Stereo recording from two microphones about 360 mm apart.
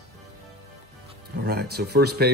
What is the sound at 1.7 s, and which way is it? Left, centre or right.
Speech, right.